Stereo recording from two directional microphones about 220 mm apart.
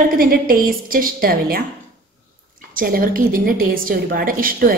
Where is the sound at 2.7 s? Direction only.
40° right (ahead or behind).